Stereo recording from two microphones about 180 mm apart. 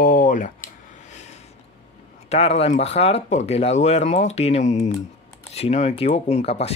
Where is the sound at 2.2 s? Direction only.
35° left (ahead or behind).